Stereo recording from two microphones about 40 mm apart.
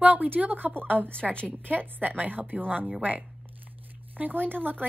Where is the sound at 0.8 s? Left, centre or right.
Right.